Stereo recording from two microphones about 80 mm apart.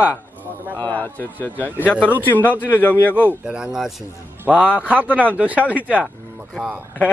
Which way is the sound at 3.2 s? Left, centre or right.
Centre.